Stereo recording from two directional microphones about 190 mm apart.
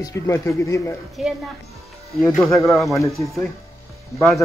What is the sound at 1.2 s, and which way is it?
Speech, centre (ahead or behind).